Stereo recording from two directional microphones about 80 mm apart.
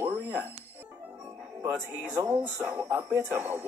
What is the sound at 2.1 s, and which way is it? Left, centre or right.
Speech, right.